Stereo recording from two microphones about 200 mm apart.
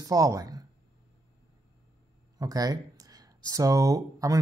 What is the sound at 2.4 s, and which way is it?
Speech, 20° right (ahead or behind).